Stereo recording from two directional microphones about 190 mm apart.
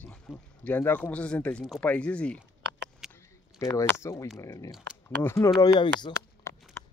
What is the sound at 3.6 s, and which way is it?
Speech, 15° left (ahead or behind).